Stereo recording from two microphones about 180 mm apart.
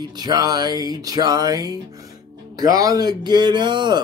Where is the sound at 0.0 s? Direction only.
20° right (ahead or behind).